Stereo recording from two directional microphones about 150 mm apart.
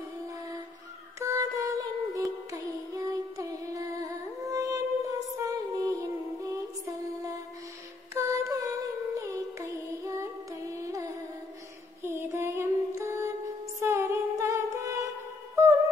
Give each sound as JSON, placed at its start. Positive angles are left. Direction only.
{"t": 1.2, "sound": "music", "side_deg": -20}
{"t": 12.0, "sound": "a sound", "side_deg": -15}
{"t": 13.7, "sound": "music", "side_deg": -20}